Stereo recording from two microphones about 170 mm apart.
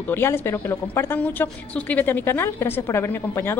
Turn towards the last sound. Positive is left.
turn(degrees=15)  # may be behind; listen again after turning